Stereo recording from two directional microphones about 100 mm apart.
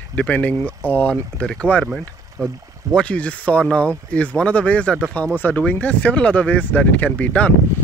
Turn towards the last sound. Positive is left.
turn(degrees=15)  # may be behind; listen again after turning